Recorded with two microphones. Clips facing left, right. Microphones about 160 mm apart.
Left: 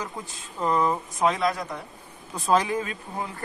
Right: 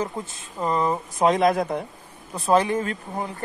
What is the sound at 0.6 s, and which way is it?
Speech, 20° right (ahead or behind).